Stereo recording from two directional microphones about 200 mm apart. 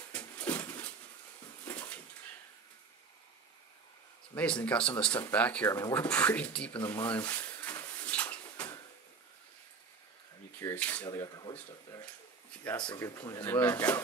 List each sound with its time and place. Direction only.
0.1 s a sound: 10° left (ahead or behind)
1.7 s dog: 5° left (ahead or behind)
4.6 s speech: 5° left (ahead or behind)
6.8 s speech: 20° left (ahead or behind)
7.2 s a sound: 10° left (ahead or behind)
10.6 s speech: 10° left (ahead or behind)
11.1 s speech: 20° left (ahead or behind)